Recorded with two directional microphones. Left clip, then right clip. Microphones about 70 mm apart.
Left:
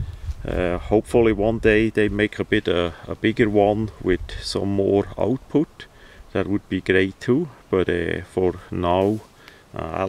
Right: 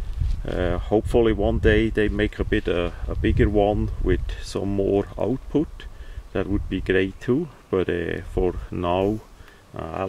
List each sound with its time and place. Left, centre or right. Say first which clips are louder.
0.5 s speech: left 2 dB; left